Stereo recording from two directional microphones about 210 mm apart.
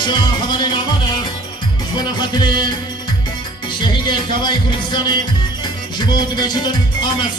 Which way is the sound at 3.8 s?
20° left (ahead or behind).